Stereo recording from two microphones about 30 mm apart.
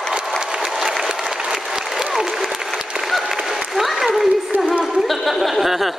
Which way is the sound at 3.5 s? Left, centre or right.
Centre.